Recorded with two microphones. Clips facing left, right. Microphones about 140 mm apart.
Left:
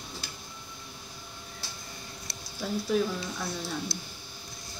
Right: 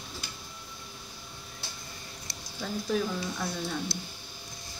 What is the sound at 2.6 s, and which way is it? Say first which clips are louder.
Speech: left 2 dB; 5° left (ahead or behind).